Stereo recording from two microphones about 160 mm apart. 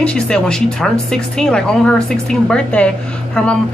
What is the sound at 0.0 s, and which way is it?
A woman's voice, 5° left (ahead or behind).